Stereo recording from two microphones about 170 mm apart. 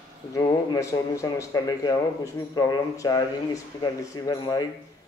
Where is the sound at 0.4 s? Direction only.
20° left (ahead or behind).